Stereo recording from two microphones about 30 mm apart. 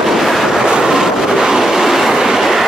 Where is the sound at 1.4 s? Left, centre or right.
Centre.